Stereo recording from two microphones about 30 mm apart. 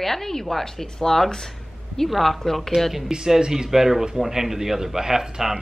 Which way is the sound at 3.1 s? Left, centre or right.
Right.